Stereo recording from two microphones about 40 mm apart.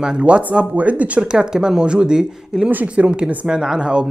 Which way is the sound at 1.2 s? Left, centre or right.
Right.